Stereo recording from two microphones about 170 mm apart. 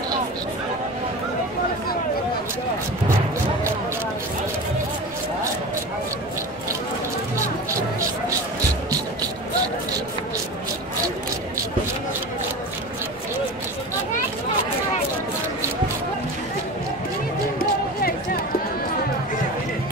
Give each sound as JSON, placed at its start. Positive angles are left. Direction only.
{"t": 17.6, "sound": "music", "side_deg": 60}